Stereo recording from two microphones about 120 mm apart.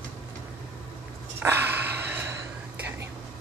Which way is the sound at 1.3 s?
20° right (ahead or behind).